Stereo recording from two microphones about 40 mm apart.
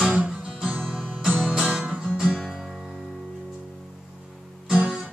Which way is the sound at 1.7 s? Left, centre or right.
Right.